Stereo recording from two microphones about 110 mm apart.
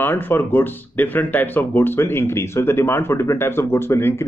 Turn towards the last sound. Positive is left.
turn(degrees=20)  # may be behind; listen again after turning